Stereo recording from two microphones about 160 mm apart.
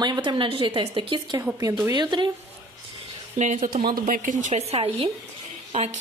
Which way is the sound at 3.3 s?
50° right (ahead or behind).